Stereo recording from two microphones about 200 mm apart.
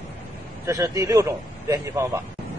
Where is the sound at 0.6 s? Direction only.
15° right (ahead or behind).